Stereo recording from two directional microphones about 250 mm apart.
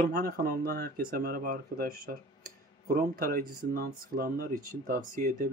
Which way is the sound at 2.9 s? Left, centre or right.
Right.